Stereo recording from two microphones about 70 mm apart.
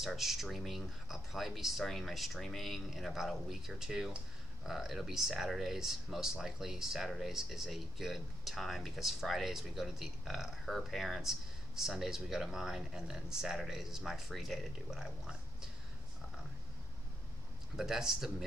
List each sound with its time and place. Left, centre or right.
0.0 s speech: centre
17.7 s speech: centre